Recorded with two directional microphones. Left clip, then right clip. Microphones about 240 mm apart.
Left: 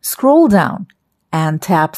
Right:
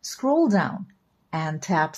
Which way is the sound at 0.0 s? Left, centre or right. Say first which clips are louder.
Left 11 dB; left.